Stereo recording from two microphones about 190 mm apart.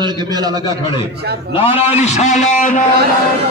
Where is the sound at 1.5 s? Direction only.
30° left (ahead or behind).